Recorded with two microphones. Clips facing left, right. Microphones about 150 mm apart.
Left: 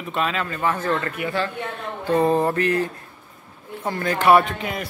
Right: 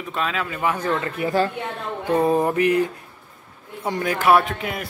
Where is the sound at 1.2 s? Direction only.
40° right (ahead or behind).